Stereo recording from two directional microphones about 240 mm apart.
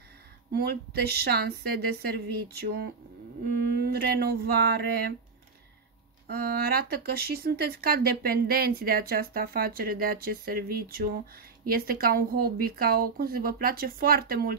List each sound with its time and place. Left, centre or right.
0.5 s speech: right
6.2 s speech: right